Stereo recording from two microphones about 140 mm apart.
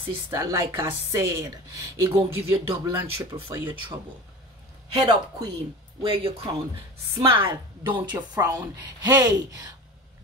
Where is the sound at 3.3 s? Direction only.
35° right (ahead or behind).